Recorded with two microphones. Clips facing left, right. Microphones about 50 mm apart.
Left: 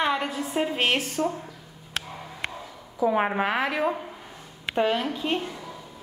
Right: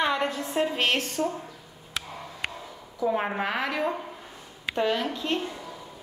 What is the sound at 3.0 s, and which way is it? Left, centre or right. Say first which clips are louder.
A woman's voice: left 3 dB; centre.